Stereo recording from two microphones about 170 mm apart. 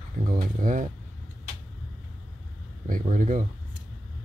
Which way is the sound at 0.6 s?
50° right (ahead or behind).